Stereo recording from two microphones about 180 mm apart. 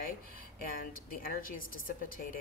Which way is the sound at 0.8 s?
50° left (ahead or behind).